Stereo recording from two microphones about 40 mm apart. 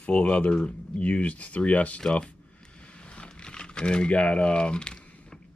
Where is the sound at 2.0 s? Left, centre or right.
Left.